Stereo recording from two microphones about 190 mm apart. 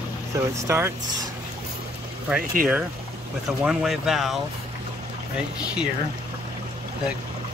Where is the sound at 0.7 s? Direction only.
15° right (ahead or behind).